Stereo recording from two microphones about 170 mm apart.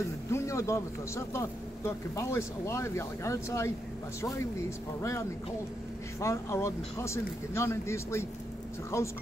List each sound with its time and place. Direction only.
0.3 s a man's voice: 15° left (ahead or behind)